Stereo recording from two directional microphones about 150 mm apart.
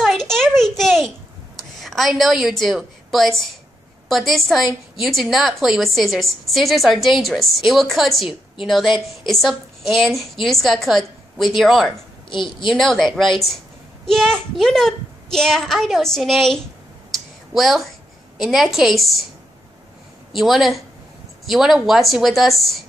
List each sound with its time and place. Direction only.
0.0 s a sound: centre (ahead or behind)
1.8 s a woman's voice: centre (ahead or behind)
12.3 s a woman's voice: 30° left (ahead or behind)
12.6 s a woman's voice: centre (ahead or behind)
20.3 s a woman's voice: centre (ahead or behind)